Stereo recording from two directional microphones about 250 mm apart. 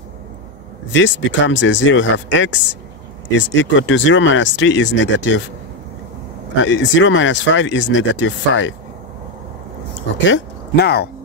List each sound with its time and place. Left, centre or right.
0.9 s speech: left
6.6 s speech: left
10.2 s speech: left